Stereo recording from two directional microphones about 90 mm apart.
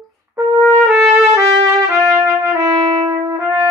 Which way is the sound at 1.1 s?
30° right (ahead or behind).